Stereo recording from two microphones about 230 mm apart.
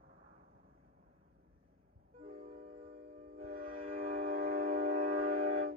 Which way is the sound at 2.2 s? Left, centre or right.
Right.